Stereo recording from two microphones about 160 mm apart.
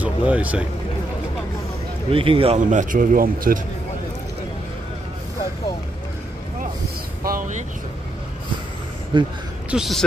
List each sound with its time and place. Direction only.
0.0 s speech: 10° right (ahead or behind)
2.0 s speech: 35° right (ahead or behind)
2.7 s a man's voice: 55° right (ahead or behind)
7.2 s a man's voice: 55° right (ahead or behind)
9.1 s speech: 30° right (ahead or behind)
9.7 s a man's voice: centre (ahead or behind)